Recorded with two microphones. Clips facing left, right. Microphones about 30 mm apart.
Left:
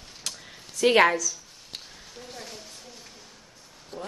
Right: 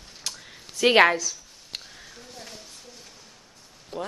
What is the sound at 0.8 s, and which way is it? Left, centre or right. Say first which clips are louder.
Speech: right 2 dB; right.